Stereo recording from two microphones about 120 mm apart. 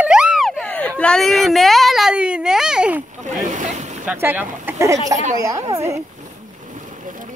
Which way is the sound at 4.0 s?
15° right (ahead or behind).